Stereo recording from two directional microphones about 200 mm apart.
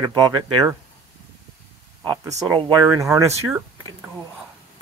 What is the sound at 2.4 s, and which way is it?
Speech, 20° right (ahead or behind).